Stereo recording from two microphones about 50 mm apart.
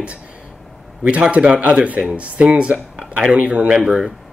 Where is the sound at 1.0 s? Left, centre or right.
Right.